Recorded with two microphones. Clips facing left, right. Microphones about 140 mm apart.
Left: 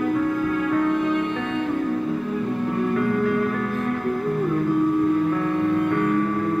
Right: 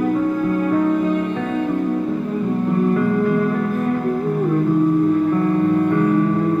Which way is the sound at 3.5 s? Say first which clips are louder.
Right 5 dB; 30° right (ahead or behind).